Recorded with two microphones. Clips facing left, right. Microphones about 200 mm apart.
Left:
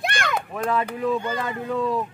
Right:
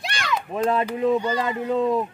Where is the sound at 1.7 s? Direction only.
20° right (ahead or behind).